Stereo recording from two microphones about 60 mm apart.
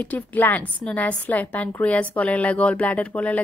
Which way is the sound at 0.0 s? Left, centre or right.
Left.